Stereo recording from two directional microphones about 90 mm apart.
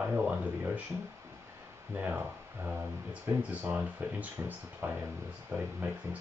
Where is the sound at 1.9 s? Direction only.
20° right (ahead or behind).